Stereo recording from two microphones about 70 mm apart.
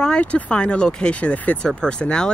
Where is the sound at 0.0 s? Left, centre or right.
Centre.